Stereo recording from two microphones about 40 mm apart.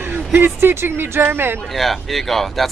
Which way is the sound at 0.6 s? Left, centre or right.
Right.